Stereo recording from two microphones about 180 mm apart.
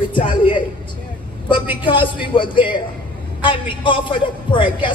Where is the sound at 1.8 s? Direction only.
25° left (ahead or behind).